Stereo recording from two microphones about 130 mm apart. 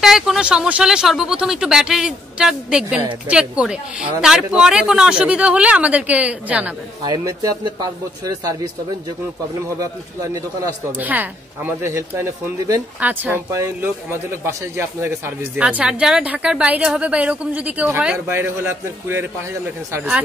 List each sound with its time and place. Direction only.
0.0 s a woman's voice: centre (ahead or behind)
7.2 s speech: 30° right (ahead or behind)
9.8 s speech: 25° right (ahead or behind)
11.0 s a woman's voice: 15° right (ahead or behind)